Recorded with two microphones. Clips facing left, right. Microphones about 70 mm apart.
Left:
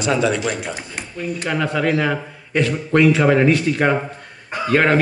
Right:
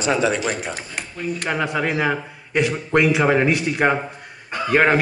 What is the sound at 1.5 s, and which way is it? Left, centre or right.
A man's voice, centre.